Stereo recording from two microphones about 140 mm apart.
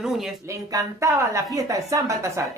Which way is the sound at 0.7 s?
20° right (ahead or behind).